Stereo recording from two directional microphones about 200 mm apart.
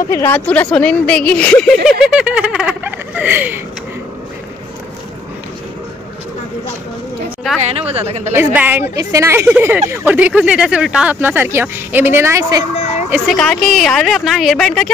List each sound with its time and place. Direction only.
0.1 s speech: 10° left (ahead or behind); by 3.6 s 10° right (ahead or behind)
7.6 s a woman's voice: 30° right (ahead or behind)
8.4 s speech: 10° right (ahead or behind)
13.1 s speech: centre (ahead or behind)